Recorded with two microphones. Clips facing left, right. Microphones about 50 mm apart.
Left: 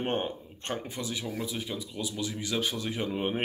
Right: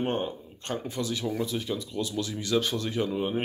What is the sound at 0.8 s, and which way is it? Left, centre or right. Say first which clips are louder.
Speech: right 4 dB; left.